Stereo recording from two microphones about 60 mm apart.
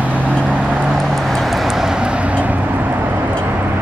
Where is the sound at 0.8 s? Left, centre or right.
Centre; by 3.2 s right.